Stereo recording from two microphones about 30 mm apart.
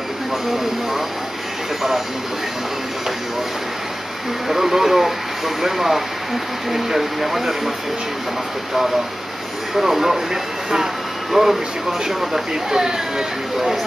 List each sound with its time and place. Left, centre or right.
4.5 s speech: centre
9.8 s speech: centre